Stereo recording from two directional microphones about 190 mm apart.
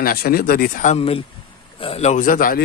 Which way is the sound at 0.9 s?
30° left (ahead or behind).